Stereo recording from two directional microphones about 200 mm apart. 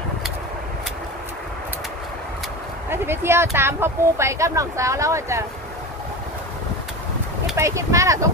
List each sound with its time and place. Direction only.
2.9 s speech: 10° right (ahead or behind)
7.5 s speech: 15° right (ahead or behind)